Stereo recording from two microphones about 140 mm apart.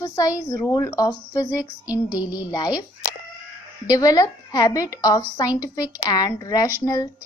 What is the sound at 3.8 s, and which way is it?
A woman's voice, 25° left (ahead or behind).